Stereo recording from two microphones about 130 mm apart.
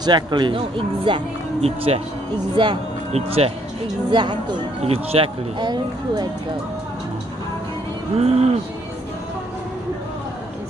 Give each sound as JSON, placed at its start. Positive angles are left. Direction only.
{"t": 0.0, "sound": "speech", "side_deg": -35}
{"t": 3.1, "sound": "speech", "side_deg": -50}
{"t": 4.1, "sound": "speech", "side_deg": -35}
{"t": 4.8, "sound": "speech", "side_deg": -50}
{"t": 8.2, "sound": "speech", "side_deg": -55}